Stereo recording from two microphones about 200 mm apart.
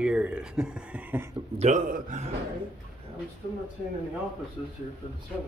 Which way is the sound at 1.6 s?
40° right (ahead or behind).